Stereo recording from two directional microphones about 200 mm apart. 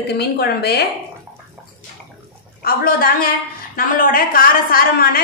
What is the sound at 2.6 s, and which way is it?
A woman's voice, 45° left (ahead or behind).